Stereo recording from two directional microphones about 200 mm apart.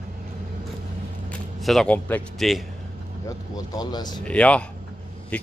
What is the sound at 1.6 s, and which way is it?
A man's voice, centre (ahead or behind).